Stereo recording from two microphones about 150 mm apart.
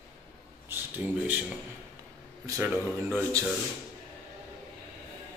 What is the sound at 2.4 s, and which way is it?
Speech, 20° right (ahead or behind).